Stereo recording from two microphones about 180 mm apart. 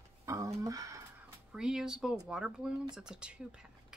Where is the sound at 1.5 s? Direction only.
5° right (ahead or behind).